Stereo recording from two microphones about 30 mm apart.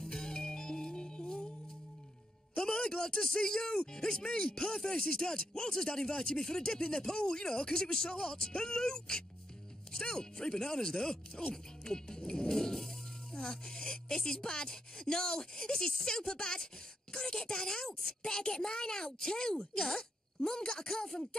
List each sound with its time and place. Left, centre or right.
0.0 s music: left
2.5 s speech: left